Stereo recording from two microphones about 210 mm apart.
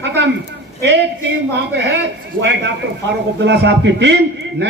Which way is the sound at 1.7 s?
55° right (ahead or behind).